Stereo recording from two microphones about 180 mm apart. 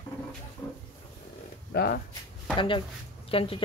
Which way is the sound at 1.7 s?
60° left (ahead or behind).